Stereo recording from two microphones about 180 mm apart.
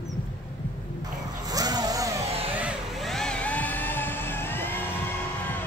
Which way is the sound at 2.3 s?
35° right (ahead or behind).